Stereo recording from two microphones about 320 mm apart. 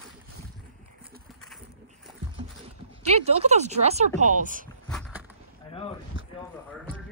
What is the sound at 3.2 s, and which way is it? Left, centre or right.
Speech, centre.